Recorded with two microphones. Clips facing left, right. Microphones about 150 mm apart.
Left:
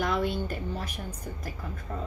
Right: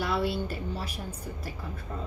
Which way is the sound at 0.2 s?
35° right (ahead or behind).